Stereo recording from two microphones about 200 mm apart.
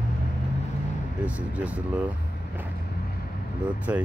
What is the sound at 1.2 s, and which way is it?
Speech, 5° right (ahead or behind).